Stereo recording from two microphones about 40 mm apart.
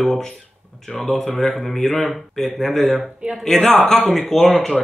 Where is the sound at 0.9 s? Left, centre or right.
Centre.